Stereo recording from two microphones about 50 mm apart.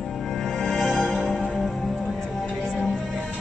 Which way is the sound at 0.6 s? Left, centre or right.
Centre.